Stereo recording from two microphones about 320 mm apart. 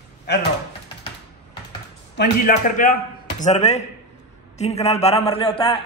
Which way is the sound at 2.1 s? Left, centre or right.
Left.